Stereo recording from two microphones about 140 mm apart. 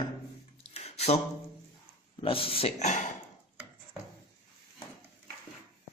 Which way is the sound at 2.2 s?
40° left (ahead or behind).